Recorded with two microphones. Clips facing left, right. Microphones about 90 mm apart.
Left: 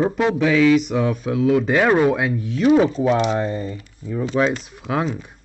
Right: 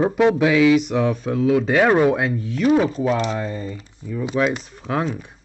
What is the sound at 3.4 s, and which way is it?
Speech, 30° left (ahead or behind).